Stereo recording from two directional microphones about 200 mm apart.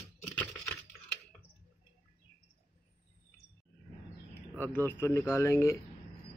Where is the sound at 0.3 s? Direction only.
10° left (ahead or behind).